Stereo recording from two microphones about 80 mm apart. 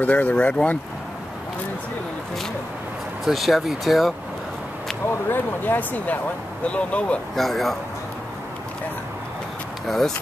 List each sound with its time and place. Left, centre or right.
0.0 s speech: centre
3.3 s speech: centre
5.0 s speech: left
7.3 s speech: centre
9.8 s speech: centre